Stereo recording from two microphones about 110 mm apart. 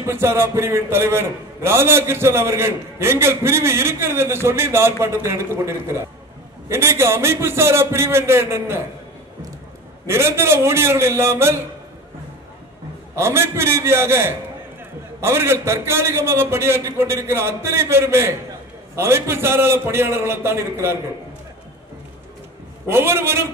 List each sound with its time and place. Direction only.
0.0 s a man's voice: 25° right (ahead or behind)
10.0 s a man's voice: 25° right (ahead or behind)
13.1 s a man's voice: 25° right (ahead or behind)
22.8 s a man's voice: 20° right (ahead or behind)